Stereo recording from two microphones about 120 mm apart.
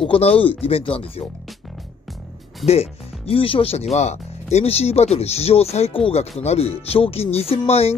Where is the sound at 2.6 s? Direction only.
60° left (ahead or behind).